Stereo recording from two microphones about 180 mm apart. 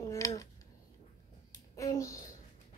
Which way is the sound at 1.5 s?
20° left (ahead or behind).